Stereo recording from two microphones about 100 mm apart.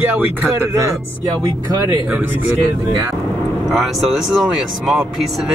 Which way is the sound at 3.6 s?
Centre (ahead or behind).